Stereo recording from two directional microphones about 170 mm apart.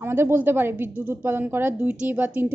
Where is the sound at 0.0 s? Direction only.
15° right (ahead or behind).